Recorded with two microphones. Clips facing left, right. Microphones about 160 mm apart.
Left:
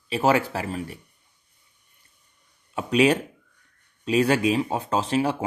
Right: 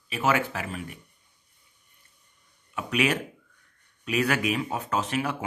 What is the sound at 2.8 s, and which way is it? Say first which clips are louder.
Speech: left 6 dB; 30° left (ahead or behind).